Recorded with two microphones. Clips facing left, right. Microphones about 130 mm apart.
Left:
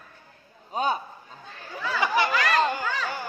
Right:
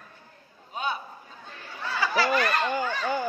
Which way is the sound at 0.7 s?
40° left (ahead or behind).